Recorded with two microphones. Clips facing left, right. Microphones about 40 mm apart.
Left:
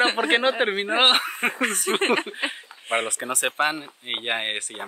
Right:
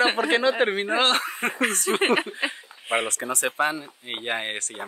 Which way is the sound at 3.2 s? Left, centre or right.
Left.